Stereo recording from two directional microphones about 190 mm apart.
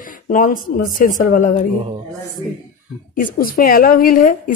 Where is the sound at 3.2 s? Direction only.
50° left (ahead or behind).